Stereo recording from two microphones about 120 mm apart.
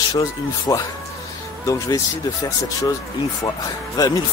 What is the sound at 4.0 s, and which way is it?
Speech, 30° left (ahead or behind).